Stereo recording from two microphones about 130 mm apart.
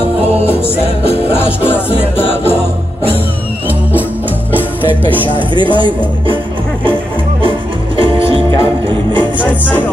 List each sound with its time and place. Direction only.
1.1 s music: 20° left (ahead or behind)
5.0 s music: 40° right (ahead or behind)
8.0 s music: 45° right (ahead or behind)
9.4 s music: 15° left (ahead or behind)